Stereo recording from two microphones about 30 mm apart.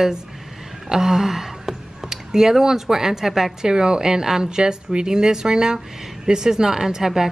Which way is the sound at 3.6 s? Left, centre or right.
Right.